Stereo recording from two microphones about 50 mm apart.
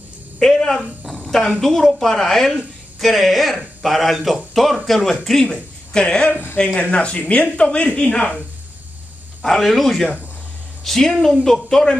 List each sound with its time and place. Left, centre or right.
0.4 s a sound: centre
1.6 s a woman's voice: centre
9.4 s a woman's voice: centre